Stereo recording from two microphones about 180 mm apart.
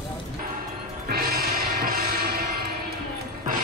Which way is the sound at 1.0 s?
60° right (ahead or behind).